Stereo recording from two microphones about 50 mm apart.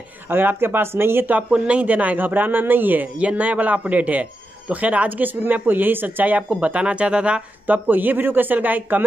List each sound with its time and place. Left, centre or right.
0.3 s speech: right
1.5 s a man's voice: right
3.2 s a man's voice: right
7.6 s a man's voice: right